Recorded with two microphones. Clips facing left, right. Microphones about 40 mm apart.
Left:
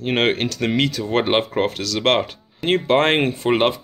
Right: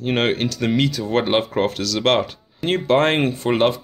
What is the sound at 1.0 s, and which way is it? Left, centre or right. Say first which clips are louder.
Speech: even; left.